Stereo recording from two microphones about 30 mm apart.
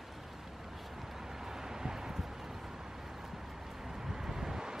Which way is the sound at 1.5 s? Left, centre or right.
Centre.